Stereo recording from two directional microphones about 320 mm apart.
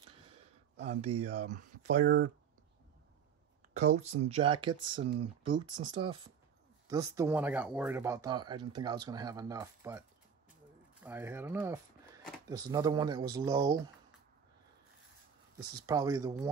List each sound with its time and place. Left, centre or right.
0.8 s speech: centre
3.7 s speech: right
15.7 s speech: centre